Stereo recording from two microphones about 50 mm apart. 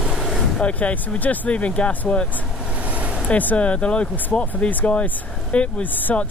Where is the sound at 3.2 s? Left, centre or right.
Left.